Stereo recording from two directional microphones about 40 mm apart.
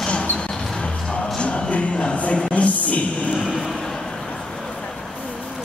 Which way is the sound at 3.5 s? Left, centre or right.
Centre.